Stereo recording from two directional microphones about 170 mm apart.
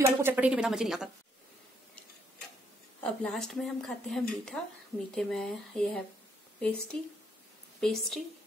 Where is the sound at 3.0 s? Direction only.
5° left (ahead or behind).